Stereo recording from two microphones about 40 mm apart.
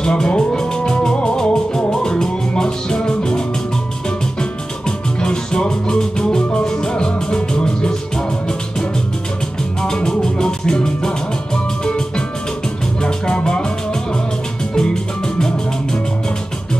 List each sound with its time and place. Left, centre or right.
0.0 s music: left
9.8 s music: centre
13.0 s music: left
14.8 s music: centre